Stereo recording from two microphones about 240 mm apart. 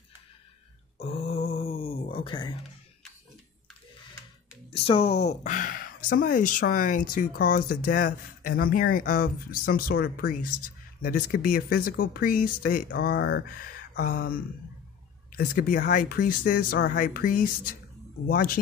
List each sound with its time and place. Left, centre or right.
0.9 s groan: left
4.7 s speech: left
15.3 s speech: left